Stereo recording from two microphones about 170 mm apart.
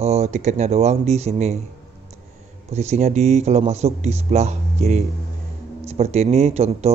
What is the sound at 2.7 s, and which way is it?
Speech, 40° right (ahead or behind).